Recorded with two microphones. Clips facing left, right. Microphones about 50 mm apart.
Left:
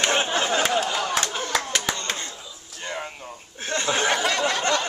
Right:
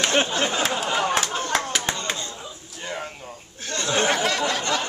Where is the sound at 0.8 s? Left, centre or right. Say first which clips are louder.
Right 2 dB; right.